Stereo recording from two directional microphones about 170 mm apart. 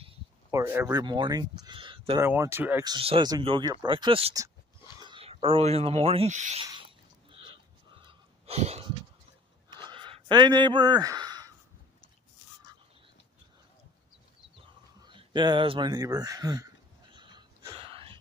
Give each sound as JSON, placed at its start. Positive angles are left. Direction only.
{"t": 0.5, "sound": "speech", "side_deg": -15}
{"t": 2.1, "sound": "speech", "side_deg": -15}
{"t": 2.8, "sound": "speech", "side_deg": -30}
{"t": 6.6, "sound": "goose", "side_deg": -30}
{"t": 9.7, "sound": "a sound", "side_deg": -25}
{"t": 15.0, "sound": "speech", "side_deg": -30}
{"t": 17.1, "sound": "wheeze", "side_deg": -25}
{"t": 17.7, "sound": "a sound", "side_deg": -35}